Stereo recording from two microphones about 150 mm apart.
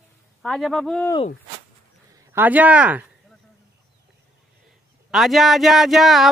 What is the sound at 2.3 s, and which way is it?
Speech, 10° right (ahead or behind).